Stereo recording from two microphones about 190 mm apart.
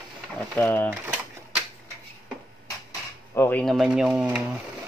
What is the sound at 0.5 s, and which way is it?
Speech, 10° left (ahead or behind).